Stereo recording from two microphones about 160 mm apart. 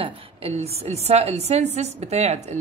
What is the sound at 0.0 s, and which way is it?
A woman's voice, 40° right (ahead or behind).